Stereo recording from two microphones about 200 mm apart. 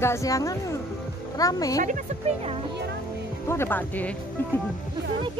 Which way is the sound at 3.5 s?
10° left (ahead or behind).